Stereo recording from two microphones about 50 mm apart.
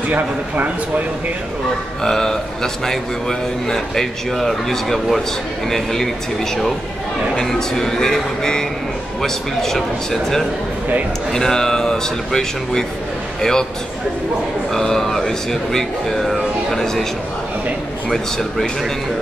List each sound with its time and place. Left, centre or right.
0.1 s speech: right
2.0 s a man's voice: centre
7.3 s a man's voice: centre
14.7 s speech: centre